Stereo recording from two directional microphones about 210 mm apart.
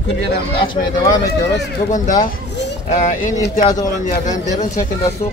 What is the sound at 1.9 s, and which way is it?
Speech, 35° left (ahead or behind).